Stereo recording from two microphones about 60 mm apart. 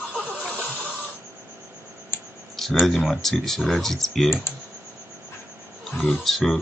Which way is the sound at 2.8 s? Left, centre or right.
Centre.